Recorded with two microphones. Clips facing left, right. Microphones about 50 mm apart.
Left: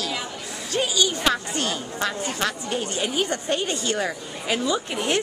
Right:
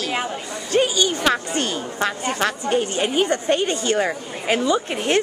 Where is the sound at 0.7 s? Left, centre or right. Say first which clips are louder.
Right 4 dB; centre.